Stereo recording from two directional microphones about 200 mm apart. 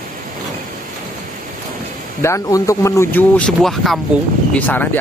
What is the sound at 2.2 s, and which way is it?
Speech, 15° left (ahead or behind).